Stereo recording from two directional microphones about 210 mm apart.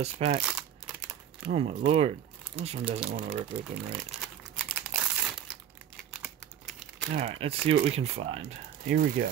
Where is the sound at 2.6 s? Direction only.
30° right (ahead or behind).